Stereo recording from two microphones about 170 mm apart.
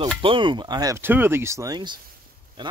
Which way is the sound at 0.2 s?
30° right (ahead or behind).